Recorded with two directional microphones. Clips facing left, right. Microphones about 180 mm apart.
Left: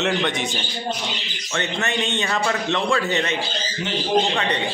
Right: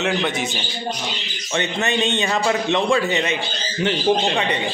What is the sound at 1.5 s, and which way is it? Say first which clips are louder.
A man's voice: right 3 dB; 20° right (ahead or behind).